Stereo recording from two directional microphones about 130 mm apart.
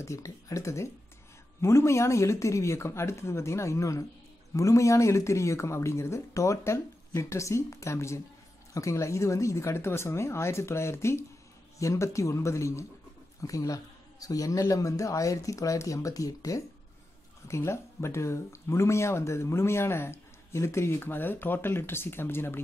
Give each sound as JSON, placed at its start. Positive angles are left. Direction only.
{"t": 0.0, "sound": "speech", "side_deg": 25}